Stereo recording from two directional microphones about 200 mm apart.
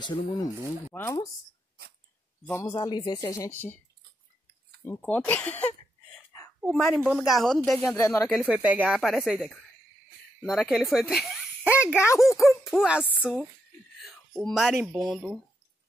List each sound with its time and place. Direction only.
0.0 s speech: 20° left (ahead or behind)
2.4 s speech: 15° left (ahead or behind)
4.8 s a woman's voice: 10° left (ahead or behind)
7.9 s speech: 15° left (ahead or behind)
8.4 s a woman's voice: centre (ahead or behind)
11.6 s speech: 10° left (ahead or behind)
12.3 s a woman's voice: centre (ahead or behind)